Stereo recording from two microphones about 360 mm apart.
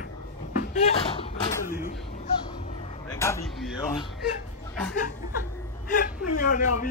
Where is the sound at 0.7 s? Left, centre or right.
Centre.